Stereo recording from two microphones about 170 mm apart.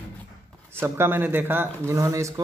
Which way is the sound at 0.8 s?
15° right (ahead or behind).